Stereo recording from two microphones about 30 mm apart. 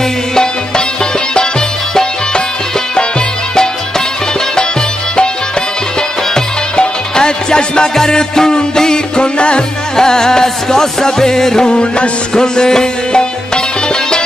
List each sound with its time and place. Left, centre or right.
6.8 s music: left
9.9 s music: left
11.7 s music: left
12.4 s music: left